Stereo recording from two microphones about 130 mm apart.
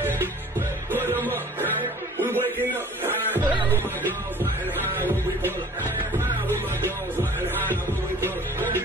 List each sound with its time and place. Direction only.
0.9 s music: 15° right (ahead or behind)
2.3 s music: 15° right (ahead or behind)
4.9 s music: 15° right (ahead or behind)
8.2 s music: 15° right (ahead or behind)